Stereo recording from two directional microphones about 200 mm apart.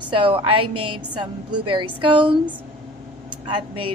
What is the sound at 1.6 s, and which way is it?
Speech, 25° right (ahead or behind).